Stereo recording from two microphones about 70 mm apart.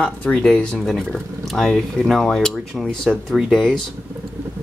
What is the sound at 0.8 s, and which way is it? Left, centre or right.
Speech, centre.